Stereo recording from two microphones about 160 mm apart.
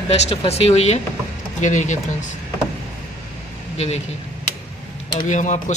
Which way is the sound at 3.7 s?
40° left (ahead or behind).